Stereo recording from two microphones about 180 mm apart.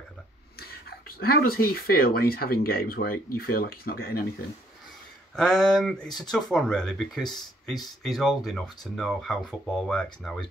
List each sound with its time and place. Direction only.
0.6 s speech: 60° left (ahead or behind)
5.3 s speech: 5° left (ahead or behind)